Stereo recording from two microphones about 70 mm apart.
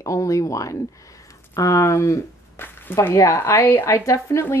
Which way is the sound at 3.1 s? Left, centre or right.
Left.